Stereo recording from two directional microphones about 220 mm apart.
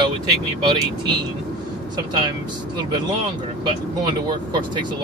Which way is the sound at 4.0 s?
20° right (ahead or behind).